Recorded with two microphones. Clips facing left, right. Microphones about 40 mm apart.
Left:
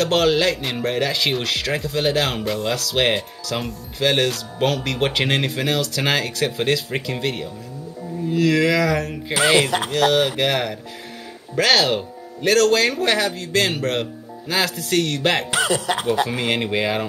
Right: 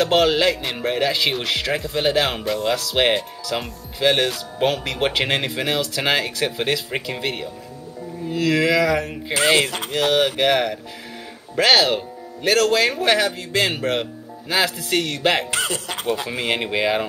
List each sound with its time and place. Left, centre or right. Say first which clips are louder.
0.0 s a man's voice: right 1 dB; centre
0.6 s speech: even; centre
2.4 s speech: right 1 dB; centre
2.7 s speech: right 1 dB; centre
3.5 s speech: left 1 dB; centre
4.4 s speech: even; centre
15.5 s speech: left 4 dB; left
16.3 s speech: left 1 dB; centre